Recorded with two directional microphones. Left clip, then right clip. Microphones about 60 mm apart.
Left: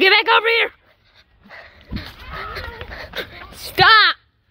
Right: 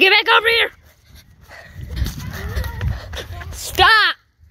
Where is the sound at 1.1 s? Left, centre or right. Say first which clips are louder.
Right 1 dB; right.